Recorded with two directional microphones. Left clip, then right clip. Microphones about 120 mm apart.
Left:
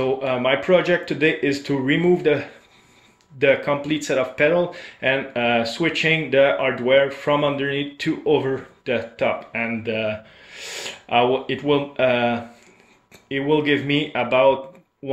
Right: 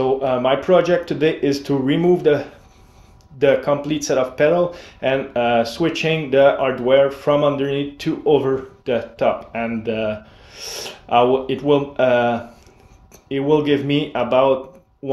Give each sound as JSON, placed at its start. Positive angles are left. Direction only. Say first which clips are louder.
{"t": 0.0, "sound": "speech", "louder": "right 3 dB", "side_deg": -25}